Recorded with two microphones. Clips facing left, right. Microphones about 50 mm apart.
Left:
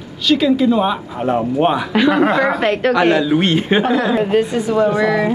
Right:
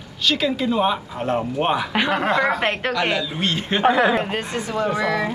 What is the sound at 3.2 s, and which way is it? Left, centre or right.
Speech, left.